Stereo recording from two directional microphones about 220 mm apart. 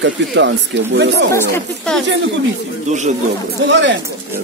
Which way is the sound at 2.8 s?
30° right (ahead or behind).